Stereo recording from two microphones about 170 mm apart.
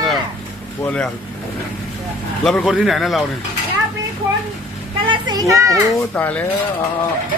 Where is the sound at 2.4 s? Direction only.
5° left (ahead or behind).